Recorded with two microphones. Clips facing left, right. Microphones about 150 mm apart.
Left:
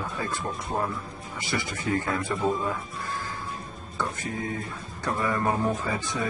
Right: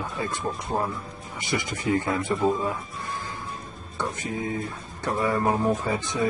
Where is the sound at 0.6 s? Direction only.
Centre (ahead or behind).